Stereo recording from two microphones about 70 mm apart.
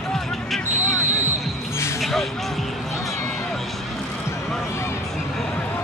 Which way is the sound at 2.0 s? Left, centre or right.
Centre.